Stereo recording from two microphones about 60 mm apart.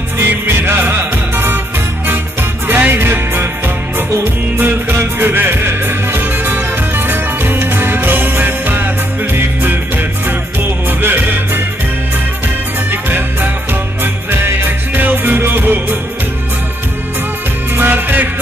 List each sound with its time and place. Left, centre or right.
0.2 s music: right
2.7 s music: right
11.0 s music: right
14.3 s music: right
17.7 s music: right